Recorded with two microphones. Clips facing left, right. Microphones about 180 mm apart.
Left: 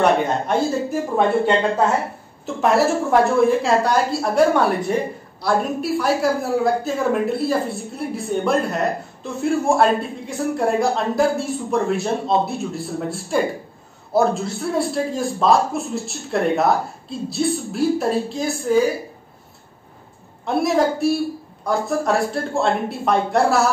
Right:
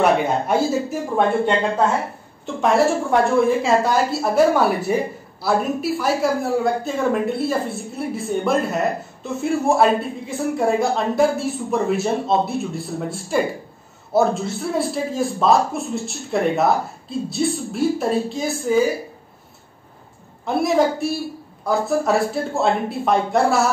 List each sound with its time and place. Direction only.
0.0 s a woman's voice: 5° right (ahead or behind)
20.4 s a woman's voice: centre (ahead or behind)